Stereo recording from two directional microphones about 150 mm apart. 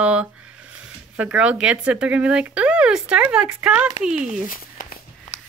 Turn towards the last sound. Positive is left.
turn(degrees=65)  # may be behind; listen again after turning